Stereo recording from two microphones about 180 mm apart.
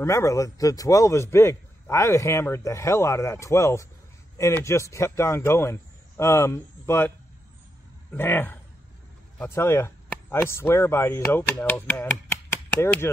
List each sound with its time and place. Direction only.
0.0 s a man's voice: 15° left (ahead or behind)
8.1 s a man's voice: 10° left (ahead or behind)